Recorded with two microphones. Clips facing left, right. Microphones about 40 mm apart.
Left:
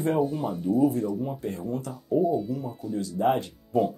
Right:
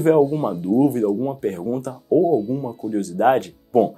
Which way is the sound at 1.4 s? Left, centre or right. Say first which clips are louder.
Right 8 dB; right.